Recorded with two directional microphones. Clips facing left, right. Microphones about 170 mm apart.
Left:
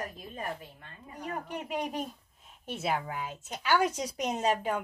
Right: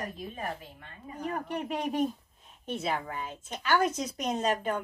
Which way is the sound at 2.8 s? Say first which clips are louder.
Left 1 dB; 10° left (ahead or behind).